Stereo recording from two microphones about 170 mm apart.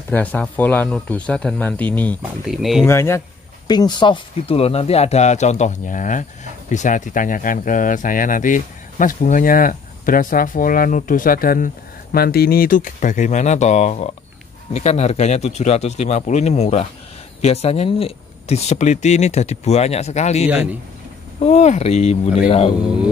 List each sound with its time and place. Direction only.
0.1 s speech: 10° left (ahead or behind)
2.4 s speech: centre (ahead or behind)
2.9 s speech: 15° left (ahead or behind); by 22.8 s 35° left (ahead or behind)